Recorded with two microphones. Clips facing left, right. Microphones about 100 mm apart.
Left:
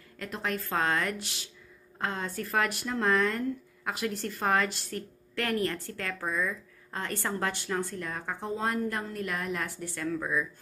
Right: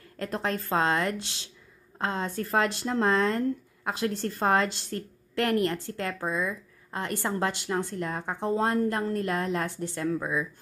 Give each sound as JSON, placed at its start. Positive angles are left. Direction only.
{"t": 0.2, "sound": "a woman's voice", "side_deg": -35}